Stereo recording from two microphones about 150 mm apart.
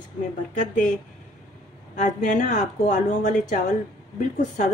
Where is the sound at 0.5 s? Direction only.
55° left (ahead or behind).